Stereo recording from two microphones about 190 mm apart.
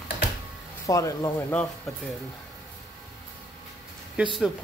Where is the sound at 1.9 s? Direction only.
Centre (ahead or behind).